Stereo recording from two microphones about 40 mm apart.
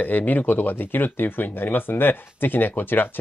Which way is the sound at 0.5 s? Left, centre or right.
Left.